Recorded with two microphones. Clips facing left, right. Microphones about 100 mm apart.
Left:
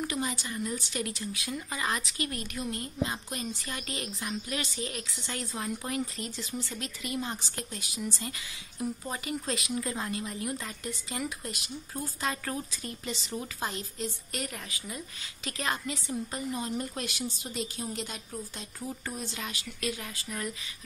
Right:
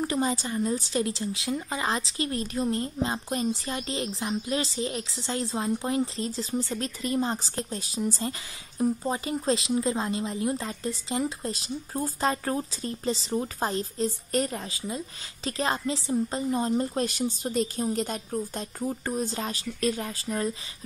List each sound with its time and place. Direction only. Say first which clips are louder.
0.0 s a woman's voice: right 6 dB; 35° right (ahead or behind)